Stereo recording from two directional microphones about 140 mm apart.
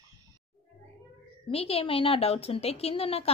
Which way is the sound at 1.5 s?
45° left (ahead or behind).